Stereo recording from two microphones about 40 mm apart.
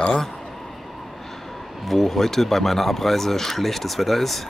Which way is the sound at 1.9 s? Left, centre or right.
Centre.